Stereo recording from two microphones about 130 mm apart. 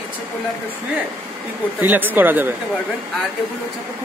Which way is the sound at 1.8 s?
15° right (ahead or behind).